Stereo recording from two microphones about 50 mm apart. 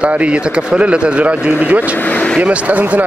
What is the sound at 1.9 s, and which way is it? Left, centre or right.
Speech, left.